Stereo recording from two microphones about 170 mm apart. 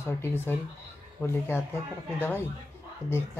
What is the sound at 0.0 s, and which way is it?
Speech, 15° left (ahead or behind).